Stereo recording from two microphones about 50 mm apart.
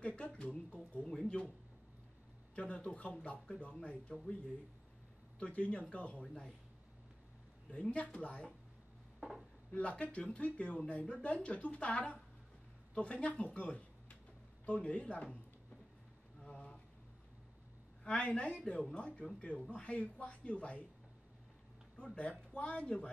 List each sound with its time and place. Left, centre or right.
0.0 s a sound: left
2.5 s speech: left
5.4 s speech: left
6.2 s speech: centre
7.7 s speech: left
9.2 s speech: centre
9.7 s speech: left
16.3 s a sound: left
18.0 s speech: left
21.9 s speech: left